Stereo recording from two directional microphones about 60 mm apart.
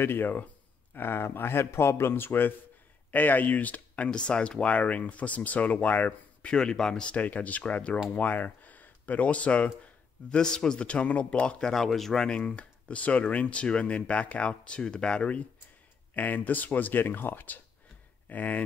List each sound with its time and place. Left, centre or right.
0.0 s speech: left
6.5 s a man's voice: centre
11.7 s speech: centre; by 18.6 s left